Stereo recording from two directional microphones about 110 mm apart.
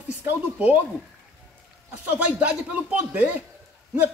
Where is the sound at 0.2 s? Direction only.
15° right (ahead or behind).